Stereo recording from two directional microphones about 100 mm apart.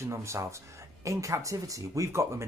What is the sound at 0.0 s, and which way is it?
Speech, 30° right (ahead or behind).